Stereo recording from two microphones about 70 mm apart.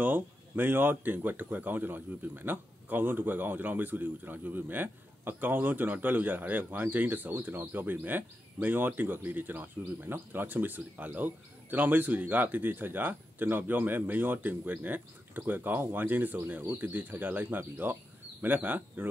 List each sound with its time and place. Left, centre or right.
0.0 s speech: right